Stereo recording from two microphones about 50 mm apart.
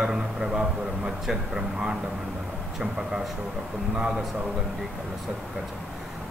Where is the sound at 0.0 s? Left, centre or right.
Centre.